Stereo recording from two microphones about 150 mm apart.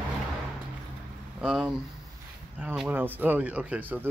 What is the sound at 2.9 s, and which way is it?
Speech, 10° right (ahead or behind).